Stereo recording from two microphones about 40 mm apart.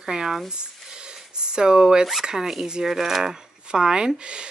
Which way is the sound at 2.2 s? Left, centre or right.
Centre.